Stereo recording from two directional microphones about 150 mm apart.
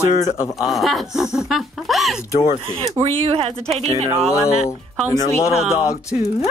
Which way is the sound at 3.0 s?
40° right (ahead or behind).